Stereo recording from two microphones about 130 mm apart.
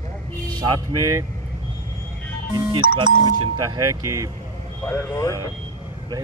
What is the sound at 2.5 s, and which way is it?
Speech, 35° right (ahead or behind).